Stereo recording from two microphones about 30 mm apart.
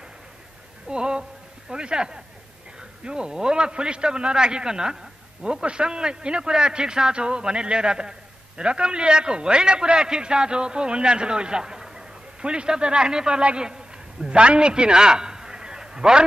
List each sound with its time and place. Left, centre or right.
0.8 s a man's voice: right
8.6 s a man's voice: right
14.7 s a sound: right